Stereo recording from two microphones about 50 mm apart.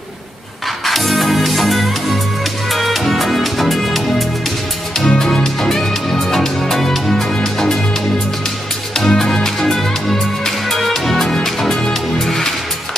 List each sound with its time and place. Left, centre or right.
0.8 s music: centre
4.9 s music: centre
8.9 s music: centre